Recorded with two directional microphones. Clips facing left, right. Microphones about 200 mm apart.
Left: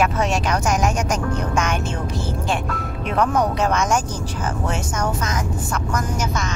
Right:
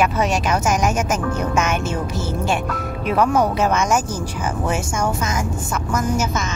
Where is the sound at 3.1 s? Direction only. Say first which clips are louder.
Right 2 dB; 5° right (ahead or behind).